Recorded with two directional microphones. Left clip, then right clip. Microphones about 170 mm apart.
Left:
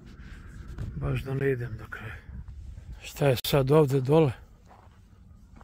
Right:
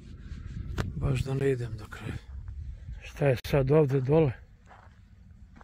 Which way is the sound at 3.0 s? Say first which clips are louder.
Left 2 dB; 20° left (ahead or behind).